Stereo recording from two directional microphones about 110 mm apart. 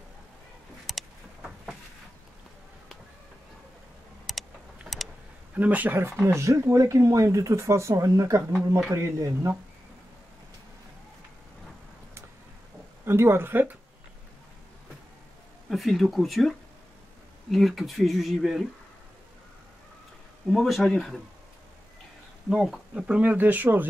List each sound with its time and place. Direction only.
0.8 s a sound: centre (ahead or behind)
4.3 s a sound: centre (ahead or behind)
5.6 s speech: 15° right (ahead or behind)
13.0 s speech: 25° right (ahead or behind)
15.7 s speech: centre (ahead or behind)
20.5 s speech: centre (ahead or behind)
22.5 s speech: 5° right (ahead or behind)